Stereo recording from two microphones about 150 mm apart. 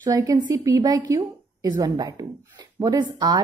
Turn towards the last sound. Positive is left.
turn(degrees=-25)  # may be behind; listen again after turning